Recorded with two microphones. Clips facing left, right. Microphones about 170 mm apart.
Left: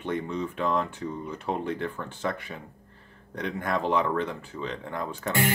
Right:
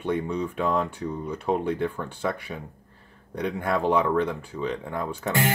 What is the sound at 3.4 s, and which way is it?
Speech, 10° right (ahead or behind).